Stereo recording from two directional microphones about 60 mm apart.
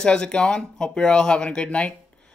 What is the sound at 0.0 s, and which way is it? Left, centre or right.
Speech, centre.